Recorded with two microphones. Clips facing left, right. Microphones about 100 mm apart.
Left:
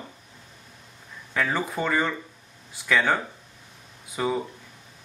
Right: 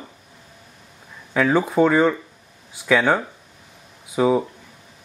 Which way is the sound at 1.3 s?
15° right (ahead or behind).